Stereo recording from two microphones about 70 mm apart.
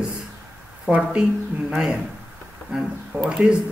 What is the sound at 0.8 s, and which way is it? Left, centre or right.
Speech, centre.